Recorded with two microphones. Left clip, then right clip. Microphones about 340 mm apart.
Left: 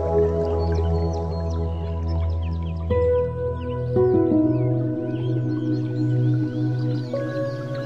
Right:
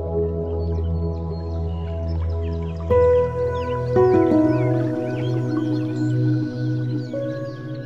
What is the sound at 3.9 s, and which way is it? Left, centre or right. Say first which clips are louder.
Music: right 3 dB; right.